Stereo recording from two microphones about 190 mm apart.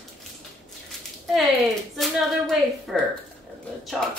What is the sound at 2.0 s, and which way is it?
Speech, centre (ahead or behind).